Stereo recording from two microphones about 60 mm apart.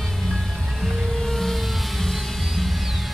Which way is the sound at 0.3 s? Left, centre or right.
Centre.